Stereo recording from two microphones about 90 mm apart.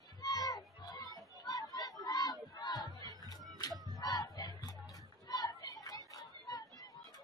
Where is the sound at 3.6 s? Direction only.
55° left (ahead or behind).